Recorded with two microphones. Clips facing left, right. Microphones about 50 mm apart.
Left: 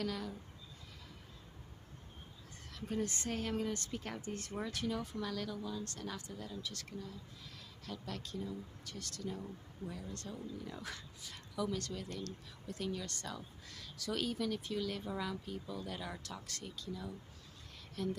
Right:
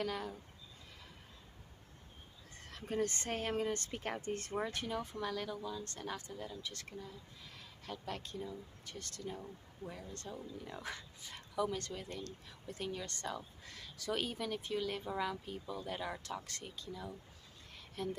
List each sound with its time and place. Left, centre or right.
0.0 s speech: right
2.7 s speech: right
4.6 s speech: right
5.9 s speech: right